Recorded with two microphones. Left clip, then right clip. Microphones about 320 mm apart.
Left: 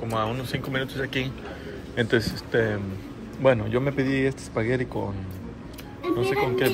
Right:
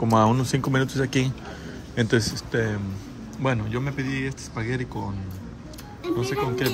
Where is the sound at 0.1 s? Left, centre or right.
Right.